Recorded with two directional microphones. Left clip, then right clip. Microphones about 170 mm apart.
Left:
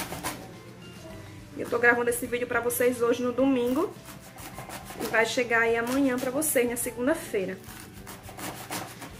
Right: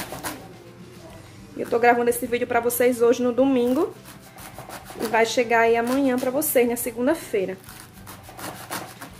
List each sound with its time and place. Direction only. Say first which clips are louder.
1.7 s a woman's voice: right 4 dB; 50° right (ahead or behind)
5.1 s a woman's voice: right 5 dB; 55° right (ahead or behind)